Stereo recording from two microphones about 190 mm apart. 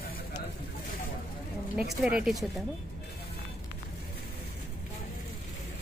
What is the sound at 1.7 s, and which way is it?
Speech, 5° right (ahead or behind).